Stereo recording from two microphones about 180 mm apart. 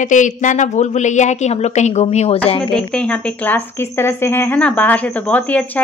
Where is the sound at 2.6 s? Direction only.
5° left (ahead or behind).